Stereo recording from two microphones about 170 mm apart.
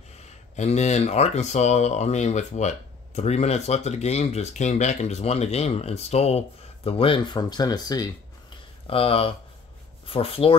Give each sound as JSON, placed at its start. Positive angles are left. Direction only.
{"t": 0.2, "sound": "speech", "side_deg": 40}
{"t": 8.8, "sound": "speech", "side_deg": 35}